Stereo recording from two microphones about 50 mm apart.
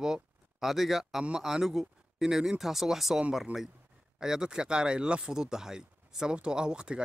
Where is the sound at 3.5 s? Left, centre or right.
Right.